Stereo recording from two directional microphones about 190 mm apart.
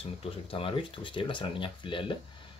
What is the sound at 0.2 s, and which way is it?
Speech, 30° left (ahead or behind).